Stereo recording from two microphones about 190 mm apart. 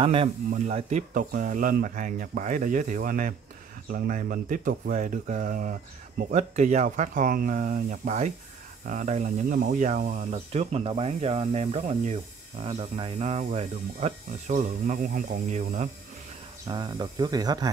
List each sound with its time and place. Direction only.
0.0 s speech: 30° right (ahead or behind)
16.6 s speech: 25° right (ahead or behind)